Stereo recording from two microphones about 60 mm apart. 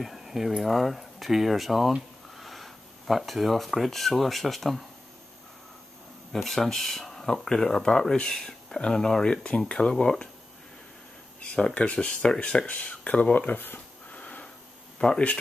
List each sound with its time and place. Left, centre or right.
0.0 s speech: centre
6.3 s speech: centre
11.5 s speech: centre
14.2 s a sound: centre
15.0 s speech: centre